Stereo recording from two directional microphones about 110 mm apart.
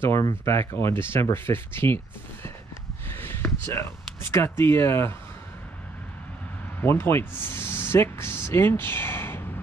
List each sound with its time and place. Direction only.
0.3 s speech: 20° left (ahead or behind)
3.1 s a sound: 20° left (ahead or behind)
3.6 s speech: 25° left (ahead or behind)
6.8 s speech: 20° left (ahead or behind)